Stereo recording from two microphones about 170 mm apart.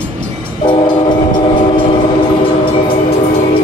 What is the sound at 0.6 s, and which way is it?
Train, 30° left (ahead or behind).